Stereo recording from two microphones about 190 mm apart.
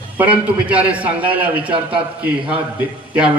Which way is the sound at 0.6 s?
5° right (ahead or behind).